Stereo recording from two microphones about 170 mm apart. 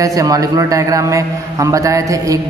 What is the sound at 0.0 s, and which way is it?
A man's voice, 20° right (ahead or behind).